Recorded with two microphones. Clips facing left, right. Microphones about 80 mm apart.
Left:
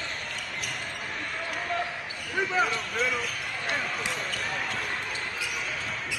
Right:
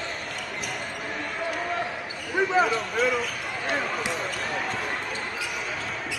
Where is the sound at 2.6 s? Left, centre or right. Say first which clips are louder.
Right 5 dB; centre.